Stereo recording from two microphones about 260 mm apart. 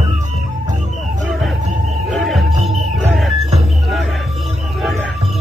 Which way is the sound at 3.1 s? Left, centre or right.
Centre.